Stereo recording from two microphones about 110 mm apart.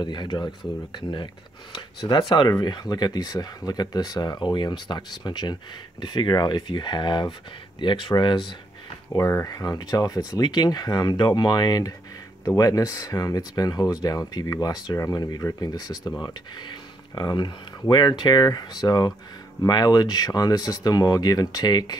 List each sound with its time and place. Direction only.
0.0 s speech: 45° left (ahead or behind)
9.1 s speech: 30° left (ahead or behind)